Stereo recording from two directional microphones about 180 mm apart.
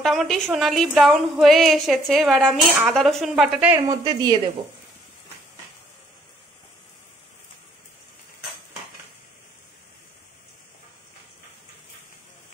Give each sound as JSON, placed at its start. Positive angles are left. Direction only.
{"t": 0.0, "sound": "a woman's voice", "side_deg": 0}
{"t": 3.8, "sound": "speech", "side_deg": -20}